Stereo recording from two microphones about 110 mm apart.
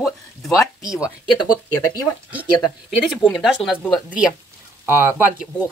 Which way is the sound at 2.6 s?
Centre (ahead or behind).